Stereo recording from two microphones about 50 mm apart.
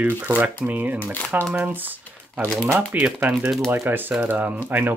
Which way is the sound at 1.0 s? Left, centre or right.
Left.